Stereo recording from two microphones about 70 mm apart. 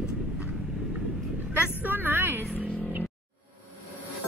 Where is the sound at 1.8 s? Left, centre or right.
Right.